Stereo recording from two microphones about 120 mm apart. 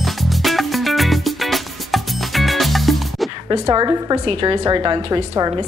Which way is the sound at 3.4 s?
35° right (ahead or behind).